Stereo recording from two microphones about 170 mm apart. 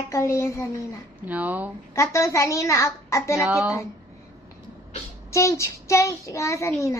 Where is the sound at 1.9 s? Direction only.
15° left (ahead or behind).